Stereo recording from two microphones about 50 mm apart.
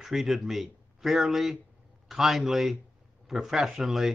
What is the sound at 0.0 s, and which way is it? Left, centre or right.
A man's voice, centre.